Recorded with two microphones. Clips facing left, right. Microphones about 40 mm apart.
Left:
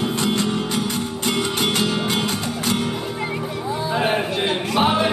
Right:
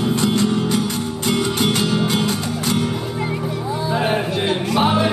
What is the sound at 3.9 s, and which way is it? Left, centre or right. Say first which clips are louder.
Music: right 1 dB; left.